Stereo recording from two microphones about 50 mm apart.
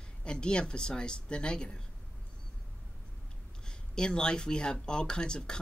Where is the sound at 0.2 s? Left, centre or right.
Centre.